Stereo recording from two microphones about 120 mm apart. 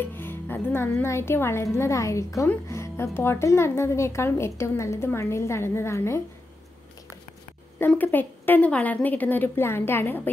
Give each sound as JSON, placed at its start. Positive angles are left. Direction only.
{"t": 0.0, "sound": "speech", "side_deg": 15}
{"t": 7.9, "sound": "a woman's voice", "side_deg": 15}